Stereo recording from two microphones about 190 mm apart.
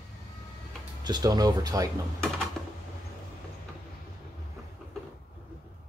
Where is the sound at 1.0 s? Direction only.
20° right (ahead or behind).